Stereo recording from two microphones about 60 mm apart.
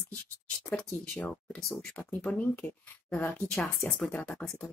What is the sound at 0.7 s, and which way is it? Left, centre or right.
Speech, centre.